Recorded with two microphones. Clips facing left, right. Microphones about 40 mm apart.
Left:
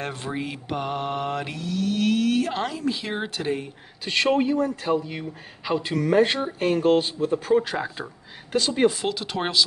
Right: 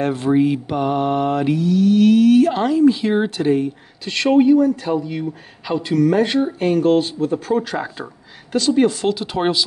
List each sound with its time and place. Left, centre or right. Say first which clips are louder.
0.0 s mantra: right 13 dB; centre
4.3 s speech: right 10 dB; centre
9.1 s mantra: right 6 dB; centre